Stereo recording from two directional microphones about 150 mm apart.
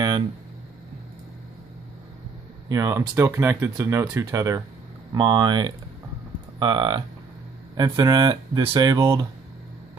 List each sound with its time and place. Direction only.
2.7 s speech: 25° right (ahead or behind)
3.0 s speech: 15° right (ahead or behind)